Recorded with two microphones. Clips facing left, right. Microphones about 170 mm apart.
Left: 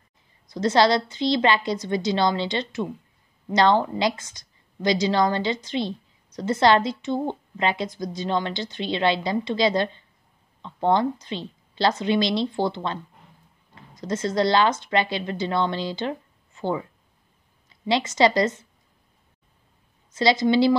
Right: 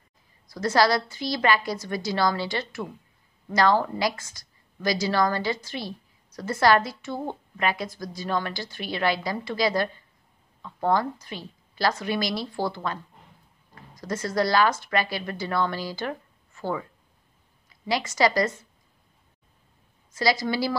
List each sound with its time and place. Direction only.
0.5 s a woman's voice: 20° left (ahead or behind)
20.2 s a woman's voice: 20° left (ahead or behind)